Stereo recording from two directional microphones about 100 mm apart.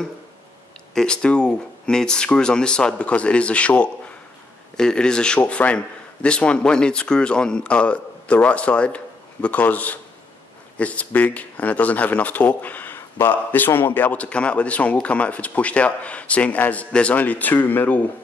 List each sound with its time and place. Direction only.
0.9 s speech: 10° left (ahead or behind)